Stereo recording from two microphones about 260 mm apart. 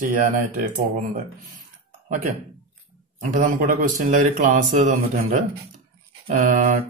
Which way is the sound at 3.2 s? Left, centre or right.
Right.